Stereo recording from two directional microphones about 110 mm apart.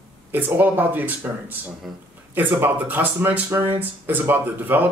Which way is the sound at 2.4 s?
15° right (ahead or behind).